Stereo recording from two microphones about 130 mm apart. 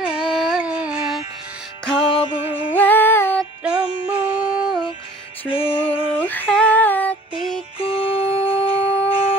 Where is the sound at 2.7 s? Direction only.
15° left (ahead or behind).